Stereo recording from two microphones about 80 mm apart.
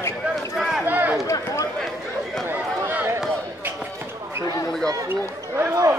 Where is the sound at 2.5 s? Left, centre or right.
Right.